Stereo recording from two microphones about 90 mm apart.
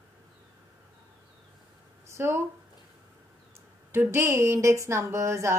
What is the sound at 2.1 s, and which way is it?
Speech, 30° right (ahead or behind).